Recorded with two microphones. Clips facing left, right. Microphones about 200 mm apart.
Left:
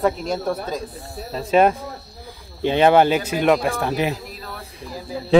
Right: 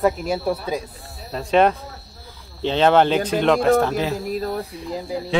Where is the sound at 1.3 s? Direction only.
5° left (ahead or behind).